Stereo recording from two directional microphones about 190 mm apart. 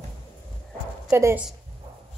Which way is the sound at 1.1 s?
10° right (ahead or behind).